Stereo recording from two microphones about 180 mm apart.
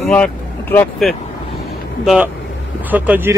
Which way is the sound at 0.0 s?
5° left (ahead or behind).